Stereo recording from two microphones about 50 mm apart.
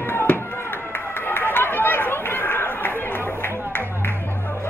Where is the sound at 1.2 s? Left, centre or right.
Left.